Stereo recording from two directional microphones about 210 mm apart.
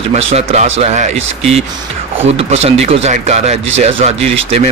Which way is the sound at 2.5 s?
30° right (ahead or behind).